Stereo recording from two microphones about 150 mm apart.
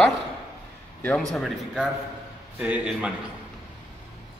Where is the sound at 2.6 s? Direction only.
10° right (ahead or behind).